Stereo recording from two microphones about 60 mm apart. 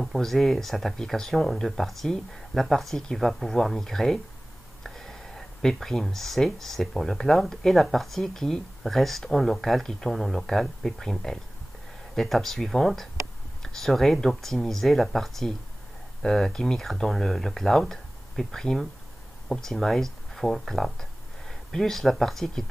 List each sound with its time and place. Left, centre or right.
0.0 s speech: centre